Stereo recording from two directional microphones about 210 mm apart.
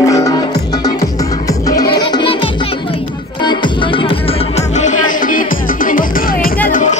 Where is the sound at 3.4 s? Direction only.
20° left (ahead or behind).